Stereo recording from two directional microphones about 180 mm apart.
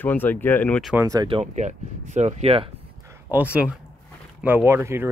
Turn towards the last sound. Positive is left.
turn(degrees=-15)  # may be behind; listen again after turning